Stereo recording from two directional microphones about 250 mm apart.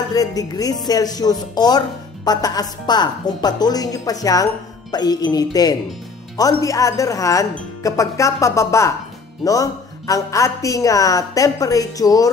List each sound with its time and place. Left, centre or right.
0.1 s a woman's voice: centre